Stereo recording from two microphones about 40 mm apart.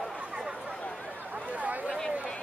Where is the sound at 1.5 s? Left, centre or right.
Right.